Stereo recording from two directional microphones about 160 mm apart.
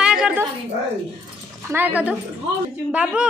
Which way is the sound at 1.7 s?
10° right (ahead or behind).